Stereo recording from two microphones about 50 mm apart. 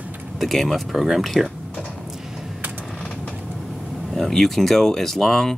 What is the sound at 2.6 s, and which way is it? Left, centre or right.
Typing, right.